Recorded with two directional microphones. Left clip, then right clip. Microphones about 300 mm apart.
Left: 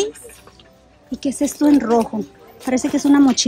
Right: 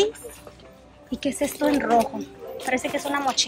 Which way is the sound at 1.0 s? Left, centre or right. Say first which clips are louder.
Left 4 dB; centre.